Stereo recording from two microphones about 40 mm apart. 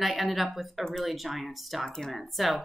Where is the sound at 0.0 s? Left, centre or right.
Centre.